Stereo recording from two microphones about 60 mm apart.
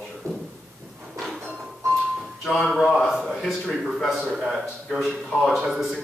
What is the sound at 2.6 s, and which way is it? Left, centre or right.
Speech, centre.